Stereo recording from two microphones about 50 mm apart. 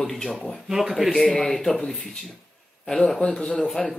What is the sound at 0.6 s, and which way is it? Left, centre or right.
Speech, centre.